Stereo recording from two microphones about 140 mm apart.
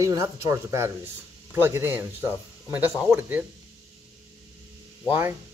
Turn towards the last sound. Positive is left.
turn(degrees=-15)  # may be behind; listen again after turning